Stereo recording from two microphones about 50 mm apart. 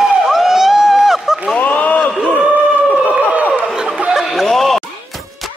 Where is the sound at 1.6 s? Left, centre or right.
Left.